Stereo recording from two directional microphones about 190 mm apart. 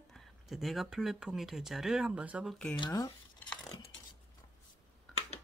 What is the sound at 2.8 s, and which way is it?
Speech, 20° left (ahead or behind).